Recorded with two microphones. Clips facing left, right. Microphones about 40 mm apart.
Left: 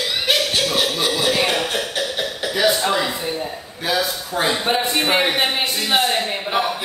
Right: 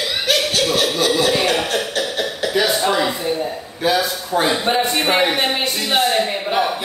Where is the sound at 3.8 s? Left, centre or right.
Centre.